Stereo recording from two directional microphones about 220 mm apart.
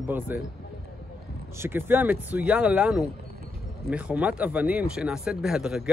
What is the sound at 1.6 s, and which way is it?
Speech, 10° right (ahead or behind).